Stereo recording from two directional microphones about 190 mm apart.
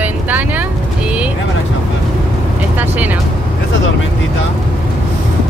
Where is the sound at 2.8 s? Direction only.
10° right (ahead or behind).